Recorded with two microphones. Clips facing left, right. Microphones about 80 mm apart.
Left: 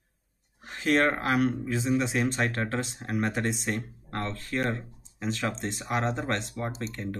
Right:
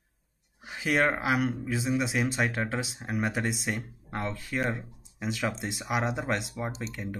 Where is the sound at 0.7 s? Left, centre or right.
Centre.